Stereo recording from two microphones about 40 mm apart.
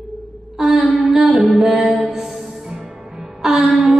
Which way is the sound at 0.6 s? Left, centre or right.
Centre.